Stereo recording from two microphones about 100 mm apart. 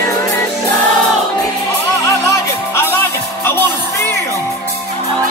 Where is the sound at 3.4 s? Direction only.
25° left (ahead or behind).